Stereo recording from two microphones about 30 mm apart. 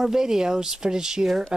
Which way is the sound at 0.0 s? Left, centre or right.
Centre.